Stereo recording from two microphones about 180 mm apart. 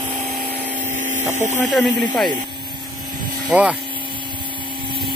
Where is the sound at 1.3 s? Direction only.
40° right (ahead or behind).